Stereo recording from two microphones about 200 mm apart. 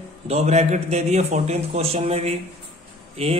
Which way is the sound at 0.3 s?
35° right (ahead or behind).